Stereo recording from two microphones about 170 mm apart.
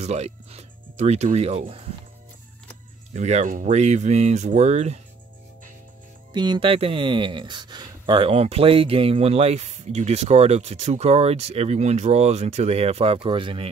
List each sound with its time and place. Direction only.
0.0 s speech: 40° right (ahead or behind)
3.1 s speech: 40° right (ahead or behind)
6.3 s speech: 25° right (ahead or behind)